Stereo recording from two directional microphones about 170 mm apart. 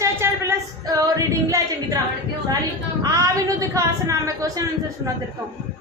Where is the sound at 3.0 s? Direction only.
20° right (ahead or behind).